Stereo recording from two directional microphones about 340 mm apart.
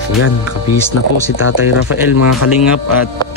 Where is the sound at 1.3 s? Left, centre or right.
Left.